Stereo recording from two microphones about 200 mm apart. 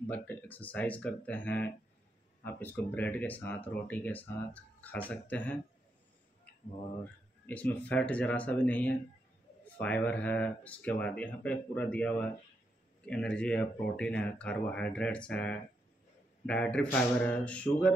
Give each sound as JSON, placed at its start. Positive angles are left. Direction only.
{"t": 0.0, "sound": "speech", "side_deg": 5}
{"t": 7.4, "sound": "speech", "side_deg": 10}